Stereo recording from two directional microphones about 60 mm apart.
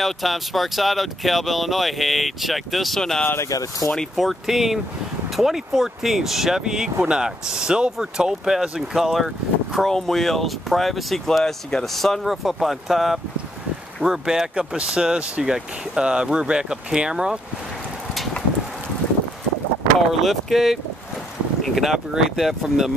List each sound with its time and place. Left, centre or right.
0.0 s speech: centre
3.0 s speech: centre
3.4 s speech: left
4.2 s speech: centre
20.1 s speech: centre